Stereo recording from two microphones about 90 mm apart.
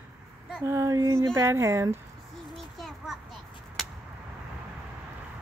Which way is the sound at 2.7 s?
Centre (ahead or behind).